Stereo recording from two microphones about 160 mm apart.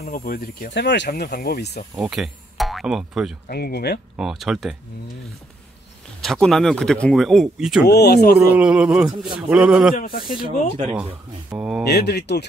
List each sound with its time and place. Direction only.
0.0 s speech: 65° left (ahead or behind); by 1.9 s 80° left
2.0 s speech: 5° right (ahead or behind)
3.4 s speech: 80° left
4.2 s speech: centre (ahead or behind)
6.2 s speech: centre (ahead or behind)
7.8 s speech: 90° left
8.4 s speech: 10° right (ahead or behind)
10.0 s speech: 65° left (ahead or behind)
11.5 s speech: 5° right (ahead or behind)
11.9 s speech: 90° left